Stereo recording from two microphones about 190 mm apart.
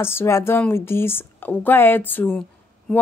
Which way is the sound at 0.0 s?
15° left (ahead or behind).